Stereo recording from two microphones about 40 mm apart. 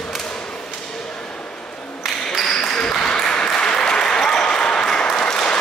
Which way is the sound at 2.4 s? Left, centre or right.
Centre.